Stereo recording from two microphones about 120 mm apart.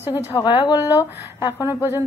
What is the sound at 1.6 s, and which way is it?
Speech, 20° right (ahead or behind).